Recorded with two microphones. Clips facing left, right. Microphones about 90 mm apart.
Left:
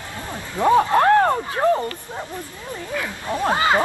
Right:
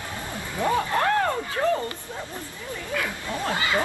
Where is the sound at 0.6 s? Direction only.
20° left (ahead or behind).